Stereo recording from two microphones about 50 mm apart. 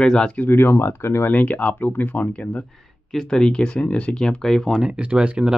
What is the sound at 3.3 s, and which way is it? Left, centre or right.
Speech, centre.